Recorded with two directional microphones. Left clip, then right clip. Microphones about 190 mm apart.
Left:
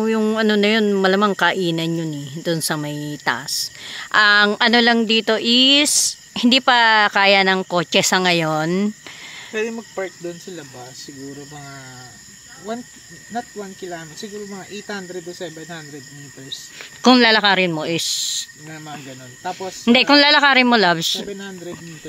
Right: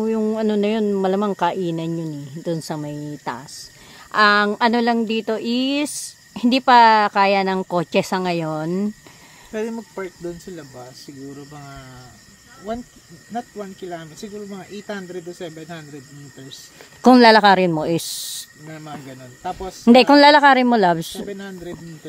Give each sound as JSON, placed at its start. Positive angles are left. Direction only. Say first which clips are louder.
{"t": 0.0, "sound": "speech", "louder": "left 2 dB", "side_deg": 5}
{"t": 13.3, "sound": "speech", "louder": "left 1 dB", "side_deg": -15}
{"t": 17.0, "sound": "speech", "louder": "right 2 dB", "side_deg": -35}
{"t": 19.9, "sound": "speech", "louder": "right 2 dB", "side_deg": -35}
{"t": 20.3, "sound": "speech", "louder": "even", "side_deg": -20}